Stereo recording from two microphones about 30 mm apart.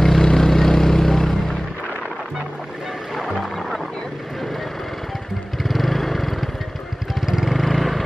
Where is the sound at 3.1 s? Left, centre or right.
Centre.